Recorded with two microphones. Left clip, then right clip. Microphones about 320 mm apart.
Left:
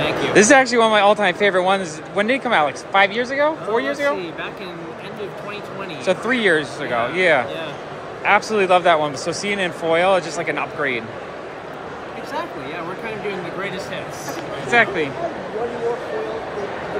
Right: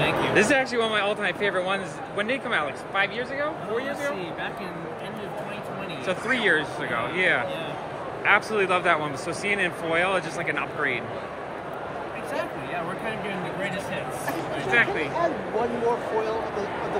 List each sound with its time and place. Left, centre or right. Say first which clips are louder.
0.0 s speech: left 6 dB; centre
6.0 s speech: left 6 dB; centre
14.7 s speech: left 6 dB; centre